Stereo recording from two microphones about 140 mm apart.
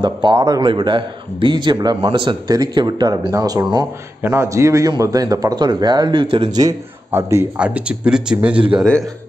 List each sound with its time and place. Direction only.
0.0 s a man's voice: 35° right (ahead or behind)
7.1 s speech: 15° right (ahead or behind)